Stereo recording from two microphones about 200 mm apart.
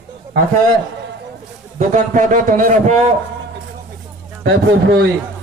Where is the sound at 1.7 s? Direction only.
40° right (ahead or behind).